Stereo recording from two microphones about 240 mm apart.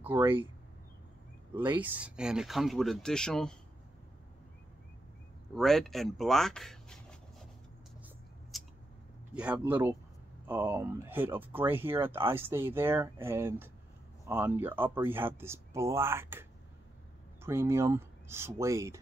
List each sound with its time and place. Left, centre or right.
0.0 s speech: centre
1.5 s speech: centre
1.8 s speech: centre
5.5 s speech: centre
8.5 s scissors: centre
9.3 s speech: centre